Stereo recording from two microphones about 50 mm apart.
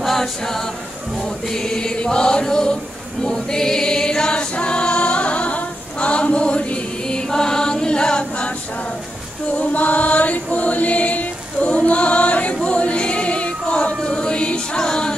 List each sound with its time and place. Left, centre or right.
0.0 s a capella: centre
1.5 s choir: centre
9.6 s chant: left
12.6 s choir: left